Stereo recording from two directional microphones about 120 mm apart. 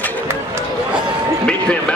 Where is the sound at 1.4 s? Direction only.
10° left (ahead or behind).